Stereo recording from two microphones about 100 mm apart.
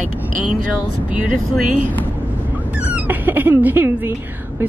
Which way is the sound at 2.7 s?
15° right (ahead or behind).